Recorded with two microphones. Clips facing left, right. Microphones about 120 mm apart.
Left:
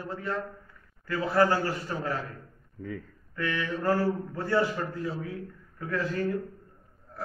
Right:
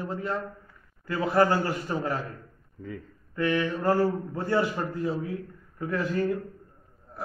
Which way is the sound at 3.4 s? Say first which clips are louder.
Right 5 dB; 25° right (ahead or behind).